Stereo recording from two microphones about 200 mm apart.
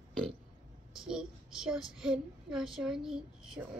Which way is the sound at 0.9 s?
5° right (ahead or behind).